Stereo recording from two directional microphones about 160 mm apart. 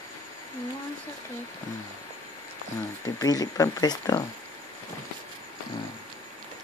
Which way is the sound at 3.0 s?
20° left (ahead or behind).